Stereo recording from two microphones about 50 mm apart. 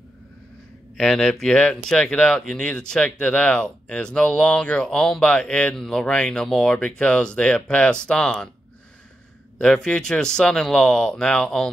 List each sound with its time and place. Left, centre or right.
0.9 s speech: centre
9.6 s speech: centre